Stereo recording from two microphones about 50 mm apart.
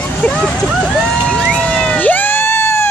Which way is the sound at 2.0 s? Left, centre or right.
Left.